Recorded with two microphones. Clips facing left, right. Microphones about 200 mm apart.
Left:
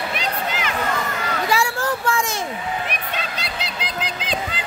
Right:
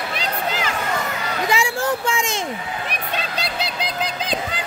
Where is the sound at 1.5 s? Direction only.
20° right (ahead or behind).